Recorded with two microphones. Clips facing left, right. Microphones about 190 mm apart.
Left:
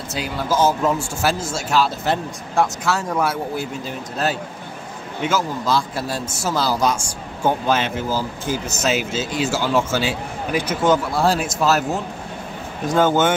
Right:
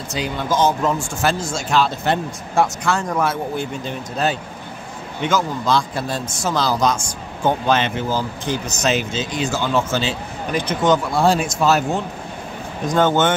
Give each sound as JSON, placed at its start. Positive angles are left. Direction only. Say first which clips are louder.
{"t": 0.1, "sound": "speech", "louder": "right 1 dB", "side_deg": 5}